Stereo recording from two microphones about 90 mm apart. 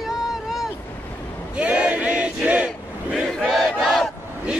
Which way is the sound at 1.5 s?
15° right (ahead or behind).